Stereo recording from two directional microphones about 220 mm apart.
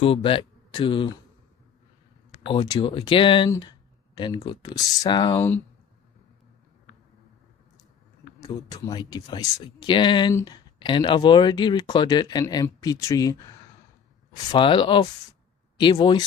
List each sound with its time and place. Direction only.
0.0 s speech: 25° left (ahead or behind)
2.3 s speech: 25° left (ahead or behind)
8.4 s speech: 15° left (ahead or behind)